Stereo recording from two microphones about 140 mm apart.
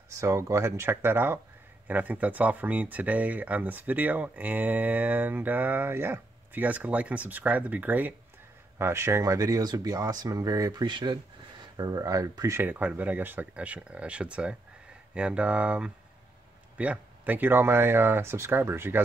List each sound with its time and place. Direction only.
0.2 s speech: 20° right (ahead or behind)